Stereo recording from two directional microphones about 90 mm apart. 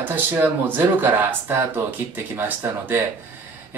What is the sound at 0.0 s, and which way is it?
Speech, 20° right (ahead or behind).